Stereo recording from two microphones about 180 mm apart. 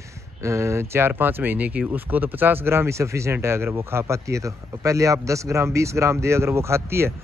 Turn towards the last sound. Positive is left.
turn(degrees=-15)  # may be behind; listen again after turning